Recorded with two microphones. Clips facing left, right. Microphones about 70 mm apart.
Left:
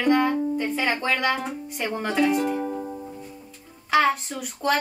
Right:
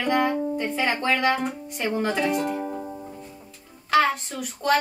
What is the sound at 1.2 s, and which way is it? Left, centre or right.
Speech, centre.